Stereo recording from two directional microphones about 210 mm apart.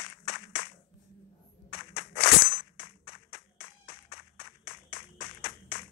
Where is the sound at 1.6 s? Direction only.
50° left (ahead or behind).